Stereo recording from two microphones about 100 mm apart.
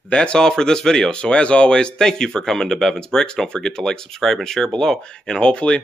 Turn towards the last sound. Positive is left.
turn(degrees=10)  # may be behind; listen again after turning